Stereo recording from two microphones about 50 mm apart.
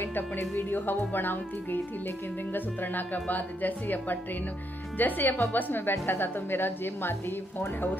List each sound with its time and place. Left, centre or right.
0.0 s a woman's voice: left